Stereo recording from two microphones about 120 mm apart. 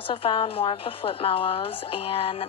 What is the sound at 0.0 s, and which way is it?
Speech, 45° left (ahead or behind).